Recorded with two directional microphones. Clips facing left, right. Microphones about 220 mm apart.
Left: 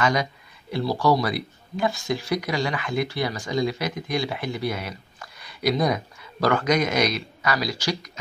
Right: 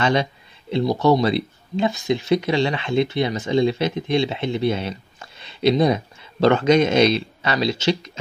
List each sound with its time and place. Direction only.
0.0 s speech: 25° right (ahead or behind)